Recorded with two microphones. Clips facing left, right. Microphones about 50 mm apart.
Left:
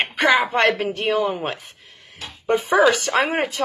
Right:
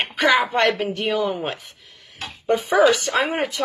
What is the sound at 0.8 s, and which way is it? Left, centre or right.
Speech, left.